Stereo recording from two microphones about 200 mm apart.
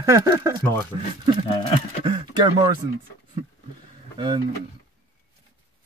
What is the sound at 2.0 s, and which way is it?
Speech, 25° right (ahead or behind).